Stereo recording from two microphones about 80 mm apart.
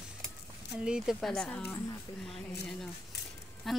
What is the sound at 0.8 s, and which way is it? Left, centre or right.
Speech, centre.